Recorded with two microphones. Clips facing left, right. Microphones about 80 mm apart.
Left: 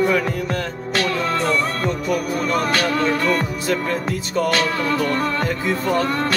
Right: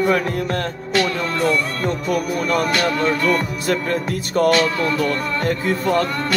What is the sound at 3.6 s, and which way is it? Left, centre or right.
Speech, right.